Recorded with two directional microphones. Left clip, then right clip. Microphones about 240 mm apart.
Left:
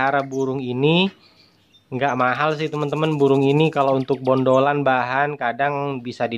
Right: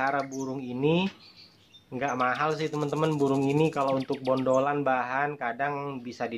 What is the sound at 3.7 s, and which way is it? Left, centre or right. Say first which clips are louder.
Speech: left 9 dB; left.